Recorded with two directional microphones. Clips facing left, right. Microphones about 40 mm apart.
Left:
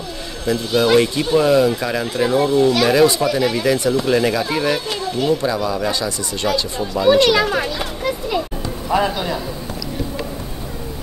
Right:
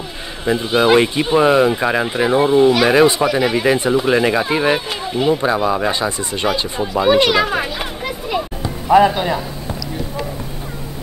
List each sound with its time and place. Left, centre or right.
0.5 s speech: right